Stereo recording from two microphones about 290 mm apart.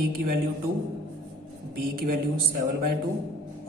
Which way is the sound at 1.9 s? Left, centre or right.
Right.